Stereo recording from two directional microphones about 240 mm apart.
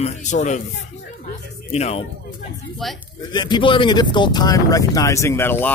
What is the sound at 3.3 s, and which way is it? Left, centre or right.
Speech, centre.